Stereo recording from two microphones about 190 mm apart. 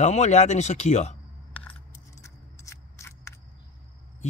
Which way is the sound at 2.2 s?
15° left (ahead or behind).